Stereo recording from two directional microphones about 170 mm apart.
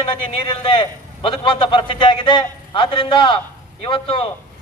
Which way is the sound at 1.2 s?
30° left (ahead or behind).